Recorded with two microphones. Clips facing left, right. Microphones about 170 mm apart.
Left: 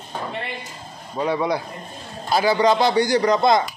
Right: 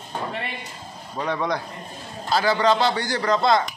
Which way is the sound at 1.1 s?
10° left (ahead or behind).